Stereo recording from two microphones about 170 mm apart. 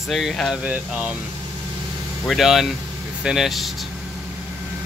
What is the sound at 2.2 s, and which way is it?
Speech, centre (ahead or behind).